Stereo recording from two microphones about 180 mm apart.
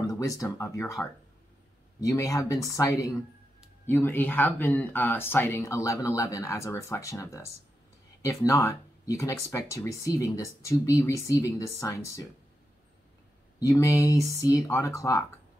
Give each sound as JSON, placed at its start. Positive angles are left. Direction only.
{"t": 0.0, "sound": "speech", "side_deg": 20}
{"t": 2.0, "sound": "speech", "side_deg": 15}
{"t": 13.6, "sound": "speech", "side_deg": 20}